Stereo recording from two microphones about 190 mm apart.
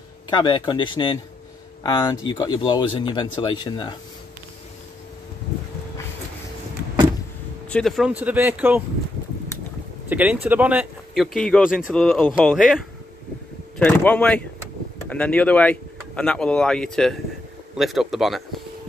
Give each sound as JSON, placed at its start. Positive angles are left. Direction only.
{"t": 0.3, "sound": "speech", "side_deg": 25}
{"t": 7.7, "sound": "speech", "side_deg": 0}
{"t": 10.0, "sound": "speech", "side_deg": -10}
{"t": 11.3, "sound": "speech", "side_deg": 5}